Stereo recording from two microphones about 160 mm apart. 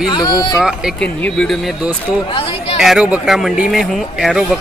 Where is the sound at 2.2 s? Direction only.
35° left (ahead or behind).